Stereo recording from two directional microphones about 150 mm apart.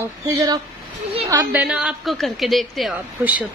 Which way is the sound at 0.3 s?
20° right (ahead or behind).